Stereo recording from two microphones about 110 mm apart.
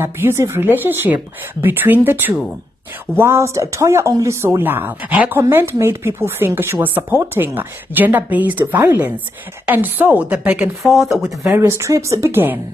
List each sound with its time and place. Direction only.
0.0 s a woman's voice: 20° right (ahead or behind); by 11.1 s centre (ahead or behind)
11.4 s a woman's voice: 20° right (ahead or behind)